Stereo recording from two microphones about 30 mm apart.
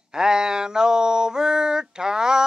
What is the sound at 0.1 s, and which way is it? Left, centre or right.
Mantra, right.